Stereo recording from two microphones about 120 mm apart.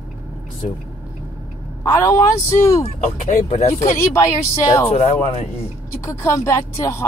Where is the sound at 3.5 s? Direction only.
65° left (ahead or behind).